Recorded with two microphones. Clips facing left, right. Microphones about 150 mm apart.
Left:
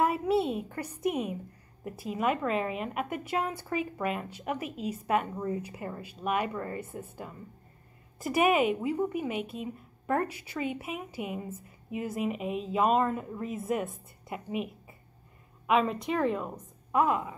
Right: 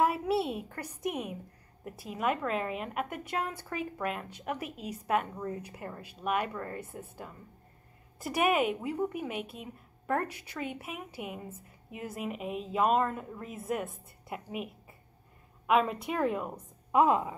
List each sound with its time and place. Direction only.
0.0 s a woman's voice: centre (ahead or behind)
16.9 s a woman's voice: 20° right (ahead or behind)